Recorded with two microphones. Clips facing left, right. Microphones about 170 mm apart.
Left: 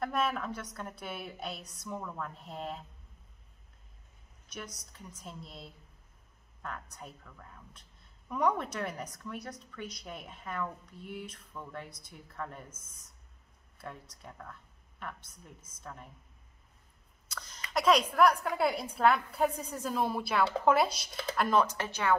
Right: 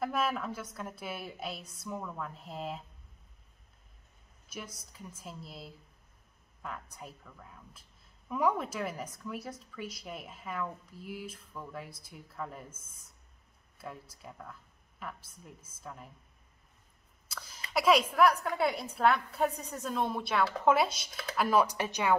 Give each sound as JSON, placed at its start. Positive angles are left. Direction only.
{"t": 0.0, "sound": "speech", "side_deg": 0}
{"t": 1.6, "sound": "a woman's voice", "side_deg": -30}
{"t": 1.9, "sound": "speech", "side_deg": -5}
{"t": 4.9, "sound": "speech", "side_deg": -5}
{"t": 13.7, "sound": "speech", "side_deg": -5}
{"t": 17.3, "sound": "a sound", "side_deg": -5}
{"t": 17.7, "sound": "speech", "side_deg": -5}